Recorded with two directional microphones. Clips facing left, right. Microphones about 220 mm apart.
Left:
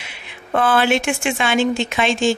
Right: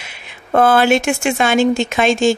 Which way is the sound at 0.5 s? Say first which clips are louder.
Right 4 dB; 45° right (ahead or behind).